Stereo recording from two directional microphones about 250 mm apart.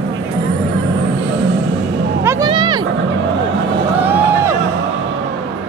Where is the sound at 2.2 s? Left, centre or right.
Centre.